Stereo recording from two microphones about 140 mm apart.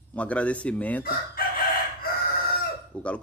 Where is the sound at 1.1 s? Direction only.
90° left.